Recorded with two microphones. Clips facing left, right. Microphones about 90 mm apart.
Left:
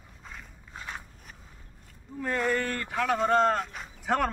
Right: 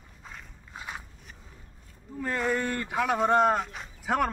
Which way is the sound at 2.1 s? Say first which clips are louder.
Even; centre (ahead or behind).